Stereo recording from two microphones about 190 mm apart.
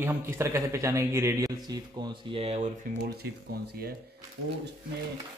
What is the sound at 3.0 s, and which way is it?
Speech, 55° right (ahead or behind).